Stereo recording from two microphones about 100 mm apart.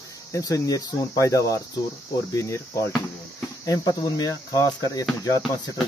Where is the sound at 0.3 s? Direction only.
35° left (ahead or behind).